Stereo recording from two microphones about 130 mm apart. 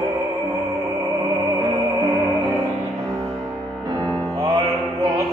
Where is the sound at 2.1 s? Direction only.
Centre (ahead or behind).